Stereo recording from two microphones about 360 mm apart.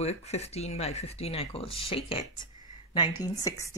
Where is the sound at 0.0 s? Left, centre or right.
Centre.